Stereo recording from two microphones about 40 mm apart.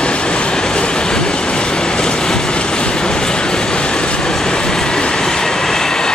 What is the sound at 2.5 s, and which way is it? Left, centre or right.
Vehicle, left.